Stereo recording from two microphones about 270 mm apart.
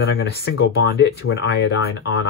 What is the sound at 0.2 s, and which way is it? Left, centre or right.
Speech, left.